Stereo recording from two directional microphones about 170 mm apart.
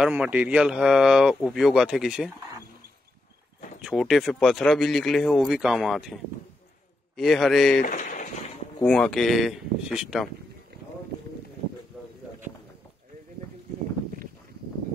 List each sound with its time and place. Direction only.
0.0 s speech: 5° right (ahead or behind)
3.8 s speech: centre (ahead or behind)
7.2 s speech: centre (ahead or behind)
7.8 s speech: 50° left (ahead or behind)
8.8 s speech: 5° left (ahead or behind)